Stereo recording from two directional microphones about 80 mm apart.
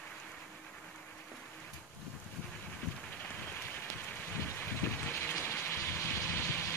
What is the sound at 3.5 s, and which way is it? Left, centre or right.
Rain, left.